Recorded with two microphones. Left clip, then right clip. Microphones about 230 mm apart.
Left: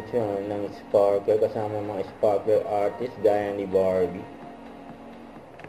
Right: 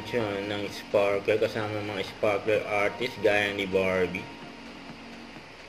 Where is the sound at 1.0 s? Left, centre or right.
Right.